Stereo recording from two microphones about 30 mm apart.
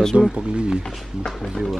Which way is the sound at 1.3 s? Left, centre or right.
Centre.